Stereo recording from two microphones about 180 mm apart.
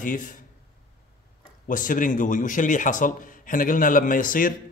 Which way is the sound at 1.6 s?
50° left (ahead or behind).